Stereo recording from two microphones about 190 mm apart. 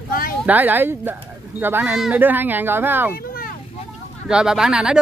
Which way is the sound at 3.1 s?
50° left (ahead or behind).